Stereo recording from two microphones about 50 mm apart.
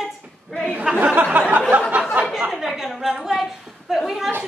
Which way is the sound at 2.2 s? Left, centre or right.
Right.